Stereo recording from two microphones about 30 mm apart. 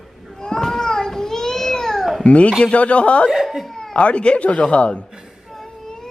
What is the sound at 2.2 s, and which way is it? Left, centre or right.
A man's voice, left.